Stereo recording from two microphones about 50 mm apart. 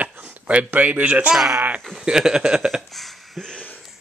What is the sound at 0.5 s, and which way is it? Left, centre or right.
Speech, right.